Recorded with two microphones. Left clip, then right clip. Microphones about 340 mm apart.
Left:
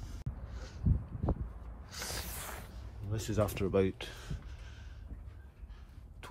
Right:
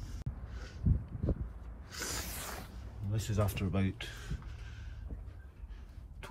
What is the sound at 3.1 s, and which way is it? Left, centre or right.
Speech, left.